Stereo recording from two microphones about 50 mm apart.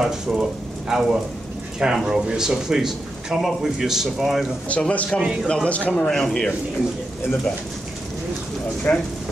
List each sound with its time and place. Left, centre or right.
0.0 s a man's voice: centre
4.6 s a man's voice: left
6.0 s speech: centre
8.9 s speech: left